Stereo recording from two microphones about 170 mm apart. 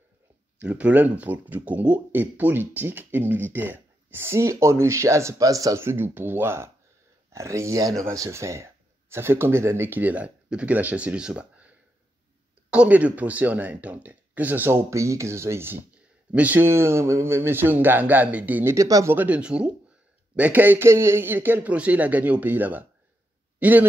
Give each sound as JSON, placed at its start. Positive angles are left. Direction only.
{"t": 0.6, "sound": "speech", "side_deg": -10}